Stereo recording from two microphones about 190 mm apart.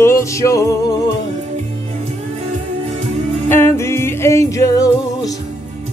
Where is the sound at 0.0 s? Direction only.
15° left (ahead or behind).